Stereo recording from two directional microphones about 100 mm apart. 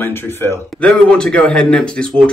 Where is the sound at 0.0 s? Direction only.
25° left (ahead or behind).